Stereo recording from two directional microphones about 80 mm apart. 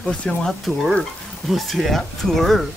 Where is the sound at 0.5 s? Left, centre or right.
Centre.